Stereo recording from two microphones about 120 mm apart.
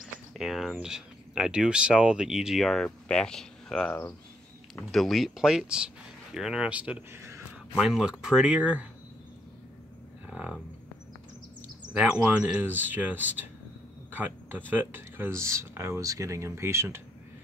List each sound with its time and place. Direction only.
0.0 s cricket: centre (ahead or behind)
0.7 s speech: 5° right (ahead or behind); by 7.4 s 20° right (ahead or behind)
7.7 s speech: 5° right (ahead or behind)
11.9 s speech: 10° right (ahead or behind)
14.1 s a sound: 15° right (ahead or behind)
14.7 s speech: 15° right (ahead or behind)